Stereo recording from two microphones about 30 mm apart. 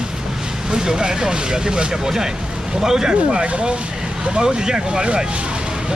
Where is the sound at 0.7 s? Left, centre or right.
Right.